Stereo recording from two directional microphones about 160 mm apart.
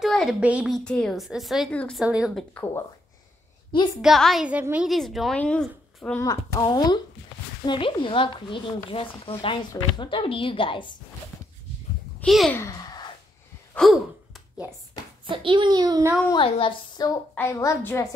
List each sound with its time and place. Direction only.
0.0 s a woman's voice: centre (ahead or behind)
0.8 s a woman's voice: 5° left (ahead or behind)
2.0 s a woman's voice: 5° right (ahead or behind)
2.5 s a woman's voice: 15° left (ahead or behind)
4.0 s a woman's voice: centre (ahead or behind)
6.2 s speech: 25° left (ahead or behind)
12.2 s a child's voice: centre (ahead or behind)
12.5 s speech: 20° left (ahead or behind)
13.7 s sigh: centre (ahead or behind)
15.2 s a child's voice: 30° right (ahead or behind)
16.3 s speech: 35° left (ahead or behind)
17.4 s a woman's voice: 15° left (ahead or behind)